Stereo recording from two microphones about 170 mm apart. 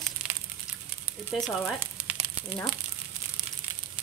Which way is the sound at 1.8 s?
10° right (ahead or behind).